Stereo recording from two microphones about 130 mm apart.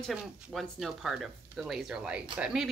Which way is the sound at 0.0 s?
Centre (ahead or behind).